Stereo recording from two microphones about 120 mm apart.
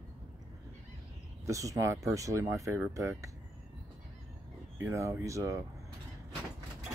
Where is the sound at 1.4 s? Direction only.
25° right (ahead or behind).